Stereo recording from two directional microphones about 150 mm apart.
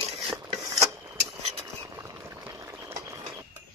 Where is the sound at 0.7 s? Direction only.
20° right (ahead or behind).